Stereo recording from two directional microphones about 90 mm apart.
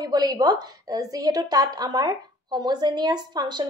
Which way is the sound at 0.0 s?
50° right (ahead or behind).